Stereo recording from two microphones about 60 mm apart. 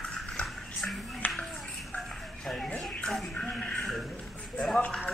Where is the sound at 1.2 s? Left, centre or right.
Left.